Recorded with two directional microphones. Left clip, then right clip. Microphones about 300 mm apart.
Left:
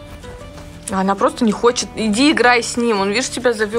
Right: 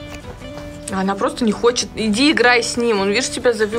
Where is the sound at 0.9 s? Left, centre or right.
Centre.